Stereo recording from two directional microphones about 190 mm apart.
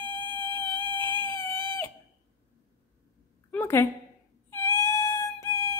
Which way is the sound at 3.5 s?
10° left (ahead or behind).